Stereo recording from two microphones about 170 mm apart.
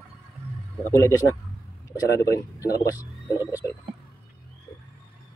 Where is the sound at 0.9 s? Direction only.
15° left (ahead or behind).